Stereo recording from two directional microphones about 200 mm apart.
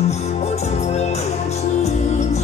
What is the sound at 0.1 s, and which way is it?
Music, 30° left (ahead or behind).